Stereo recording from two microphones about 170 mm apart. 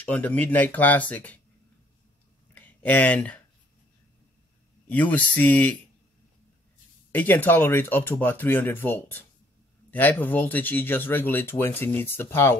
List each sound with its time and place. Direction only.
0.0 s speech: 10° left (ahead or behind)
2.5 s a sound: 10° left (ahead or behind)
4.8 s speech: 10° left (ahead or behind)
7.2 s speech: 10° left (ahead or behind)